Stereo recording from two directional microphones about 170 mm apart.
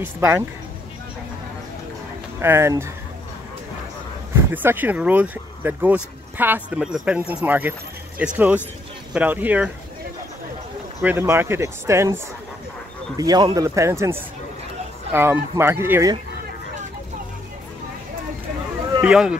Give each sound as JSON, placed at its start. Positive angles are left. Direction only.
{"t": 0.0, "sound": "speech", "side_deg": -15}
{"t": 2.4, "sound": "speech", "side_deg": -15}
{"t": 4.5, "sound": "speech", "side_deg": -10}
{"t": 11.0, "sound": "speech", "side_deg": -15}
{"t": 13.2, "sound": "speech", "side_deg": -25}
{"t": 18.9, "sound": "speech", "side_deg": -5}